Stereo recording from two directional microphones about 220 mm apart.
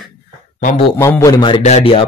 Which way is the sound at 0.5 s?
35° left (ahead or behind).